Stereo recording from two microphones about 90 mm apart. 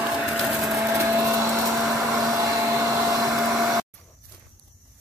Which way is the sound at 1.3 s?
30° right (ahead or behind).